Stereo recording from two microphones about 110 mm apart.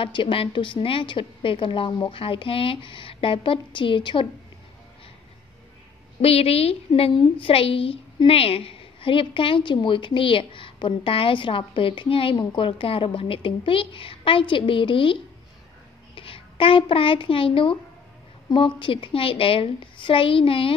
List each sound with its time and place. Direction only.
0.0 s a woman's voice: 50° left (ahead or behind)
2.1 s a woman's voice: 55° left (ahead or behind)
6.2 s a woman's voice: 65° left (ahead or behind)
6.9 s a woman's voice: 50° left (ahead or behind)
16.2 s a child's voice: 55° left (ahead or behind)